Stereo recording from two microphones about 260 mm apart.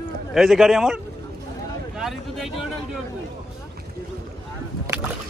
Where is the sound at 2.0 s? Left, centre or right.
Centre.